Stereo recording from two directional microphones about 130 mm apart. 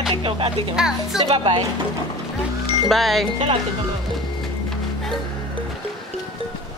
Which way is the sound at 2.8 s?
Centre (ahead or behind).